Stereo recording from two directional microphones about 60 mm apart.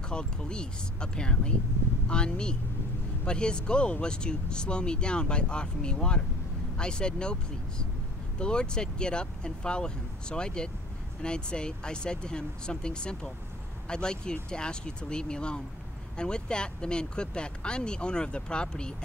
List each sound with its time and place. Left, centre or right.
0.1 s speech: centre